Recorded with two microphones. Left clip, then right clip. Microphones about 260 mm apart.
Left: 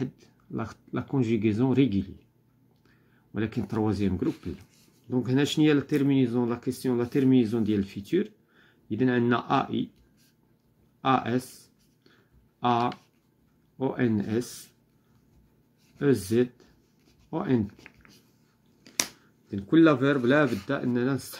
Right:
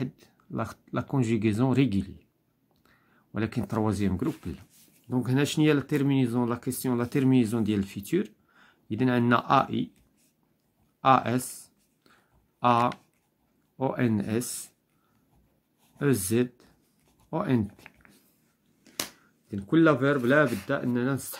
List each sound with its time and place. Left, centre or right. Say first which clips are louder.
0.0 s speech: left 1 dB; centre
8.5 s a sound: left 2 dB; right
9.3 s speech: right 3 dB; right
11.0 s a sound: right 3 dB; right
12.5 s speech: right 2 dB; right
16.0 s speech: left 2 dB; right
17.6 s speech: left 1 dB; centre
19.5 s speech: left 2 dB; centre